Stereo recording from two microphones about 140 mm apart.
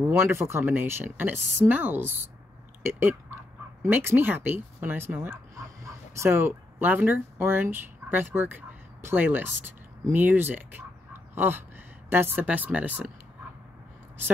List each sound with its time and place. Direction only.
0.3 s speech: 20° right (ahead or behind)